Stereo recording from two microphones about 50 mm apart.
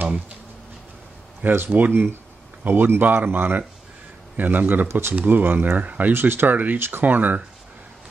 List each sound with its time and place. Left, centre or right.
1.5 s speech: right
6.1 s speech: right